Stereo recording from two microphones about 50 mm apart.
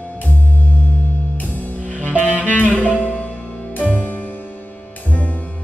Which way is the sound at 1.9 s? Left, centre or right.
Right.